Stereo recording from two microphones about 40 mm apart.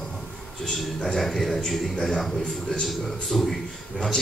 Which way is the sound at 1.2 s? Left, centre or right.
Centre.